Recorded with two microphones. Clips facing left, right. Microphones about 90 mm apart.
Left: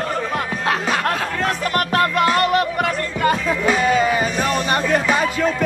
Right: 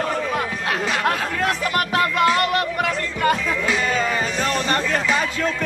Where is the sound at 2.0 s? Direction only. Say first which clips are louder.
Even; 45° left (ahead or behind).